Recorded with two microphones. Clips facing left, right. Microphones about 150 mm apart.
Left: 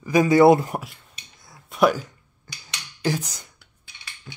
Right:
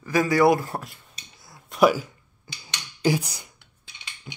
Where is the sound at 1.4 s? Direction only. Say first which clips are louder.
Right 1 dB; centre (ahead or behind).